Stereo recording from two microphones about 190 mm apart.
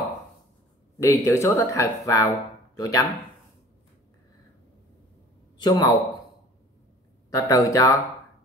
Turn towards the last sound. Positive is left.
turn(degrees=15)  # may be behind; listen again after turning